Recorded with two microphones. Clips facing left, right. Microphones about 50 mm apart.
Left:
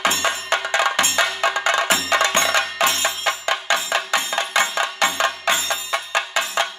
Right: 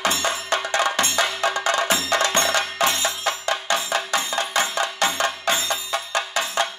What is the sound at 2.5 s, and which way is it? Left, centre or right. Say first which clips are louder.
Music: left 2 dB; left.